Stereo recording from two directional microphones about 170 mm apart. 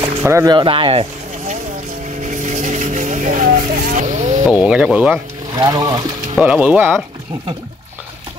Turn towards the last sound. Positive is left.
turn(degrees=-10)  # may be behind; listen again after turning